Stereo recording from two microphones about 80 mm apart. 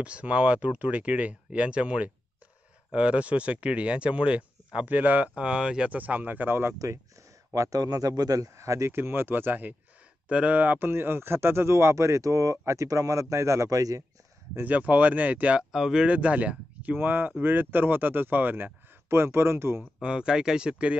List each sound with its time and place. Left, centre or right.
0.0 s speech: centre
7.5 s speech: right
14.5 s speech: right
15.7 s speech: centre; by 19.8 s right
20.0 s speech: centre